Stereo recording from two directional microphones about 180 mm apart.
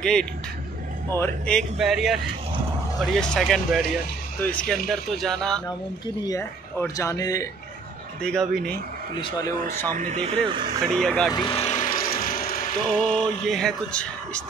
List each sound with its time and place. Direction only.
0.0 s speech: 5° left (ahead or behind)
6.2 s speech: 20° left (ahead or behind)
8.2 s speech: 5° left (ahead or behind)
9.2 s speech: 15° left (ahead or behind)
9.9 s speech: 40° right (ahead or behind)
11.0 s speech: 5° left (ahead or behind)
11.3 s vehicle: 30° left (ahead or behind); by 12.6 s 55° left (ahead or behind)
13.1 s speech: 5° left (ahead or behind)